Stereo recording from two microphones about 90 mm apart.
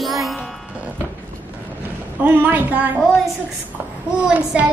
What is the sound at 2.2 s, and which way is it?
Speech, 20° right (ahead or behind).